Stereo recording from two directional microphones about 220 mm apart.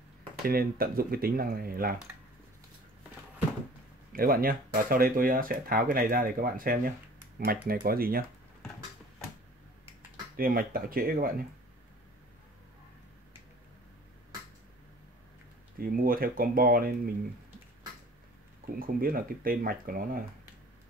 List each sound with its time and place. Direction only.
0.5 s speech: 40° right (ahead or behind)
4.1 s speech: 40° right (ahead or behind)
10.3 s speech: 40° right (ahead or behind)
15.8 s speech: 40° right (ahead or behind)
18.7 s speech: 40° right (ahead or behind)